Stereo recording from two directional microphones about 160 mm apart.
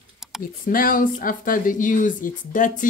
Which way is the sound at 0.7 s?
60° left (ahead or behind).